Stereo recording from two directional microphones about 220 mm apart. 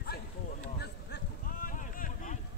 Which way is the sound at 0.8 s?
45° left (ahead or behind).